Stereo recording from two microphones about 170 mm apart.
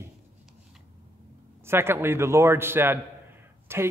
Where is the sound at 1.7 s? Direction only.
15° right (ahead or behind).